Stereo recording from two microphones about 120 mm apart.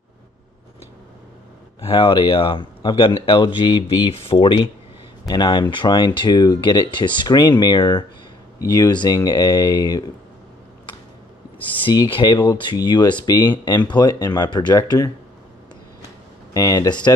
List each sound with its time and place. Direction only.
1.9 s speech: 40° left (ahead or behind)
11.8 s speech: 40° left (ahead or behind)
16.5 s speech: 30° left (ahead or behind)